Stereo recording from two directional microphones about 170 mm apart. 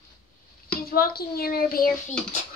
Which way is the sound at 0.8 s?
65° left (ahead or behind).